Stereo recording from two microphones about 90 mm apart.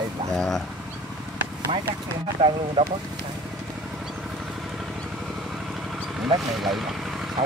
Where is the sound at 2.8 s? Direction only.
60° right (ahead or behind).